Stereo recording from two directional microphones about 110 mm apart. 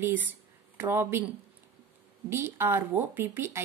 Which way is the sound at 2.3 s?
20° right (ahead or behind).